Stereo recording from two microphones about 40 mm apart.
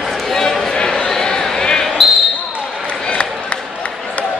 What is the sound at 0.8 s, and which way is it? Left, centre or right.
Basketball bounce, centre.